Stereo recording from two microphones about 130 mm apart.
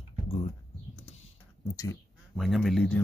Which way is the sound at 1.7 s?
25° left (ahead or behind).